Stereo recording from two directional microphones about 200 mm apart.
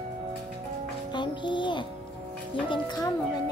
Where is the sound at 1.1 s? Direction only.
25° left (ahead or behind).